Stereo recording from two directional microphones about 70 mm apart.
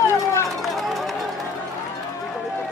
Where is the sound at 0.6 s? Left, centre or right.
Centre.